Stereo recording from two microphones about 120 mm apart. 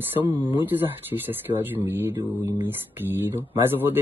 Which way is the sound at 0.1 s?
15° right (ahead or behind).